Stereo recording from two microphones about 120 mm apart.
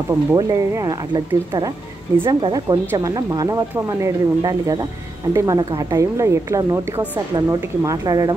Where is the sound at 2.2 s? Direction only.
40° right (ahead or behind).